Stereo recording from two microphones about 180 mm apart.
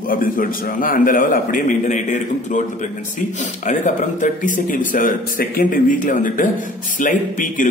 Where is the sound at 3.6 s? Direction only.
45° left (ahead or behind).